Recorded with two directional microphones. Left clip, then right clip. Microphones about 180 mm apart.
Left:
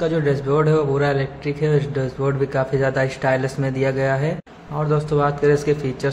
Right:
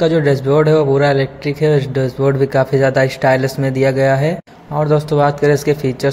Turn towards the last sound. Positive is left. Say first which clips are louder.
# right 5 dB
turn(degrees=-20)  # may be behind; listen again after turning